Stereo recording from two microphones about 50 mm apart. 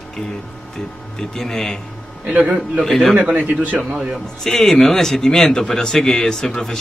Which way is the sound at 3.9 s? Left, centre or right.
Centre.